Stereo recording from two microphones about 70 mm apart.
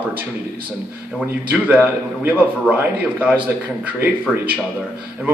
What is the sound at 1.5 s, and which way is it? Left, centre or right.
A man's voice, centre.